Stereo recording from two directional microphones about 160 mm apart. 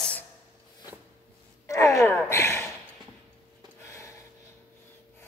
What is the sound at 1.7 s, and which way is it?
Speech, 20° left (ahead or behind).